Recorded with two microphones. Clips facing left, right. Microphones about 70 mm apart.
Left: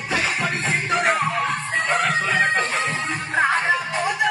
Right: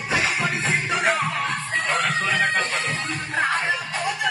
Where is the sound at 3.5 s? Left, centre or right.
Left.